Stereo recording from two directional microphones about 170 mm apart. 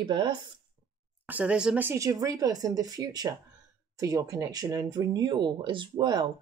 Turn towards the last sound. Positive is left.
turn(degrees=-25)  # may be behind; listen again after turning